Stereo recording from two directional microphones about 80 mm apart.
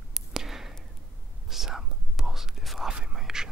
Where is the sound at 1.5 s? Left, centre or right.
Centre.